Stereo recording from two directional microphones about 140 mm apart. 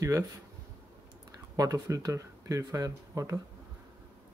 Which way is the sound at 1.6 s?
25° right (ahead or behind).